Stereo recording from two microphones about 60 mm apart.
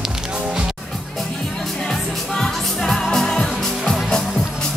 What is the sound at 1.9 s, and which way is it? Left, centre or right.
Music, centre.